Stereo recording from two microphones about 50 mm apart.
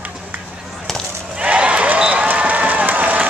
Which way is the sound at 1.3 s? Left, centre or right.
Right.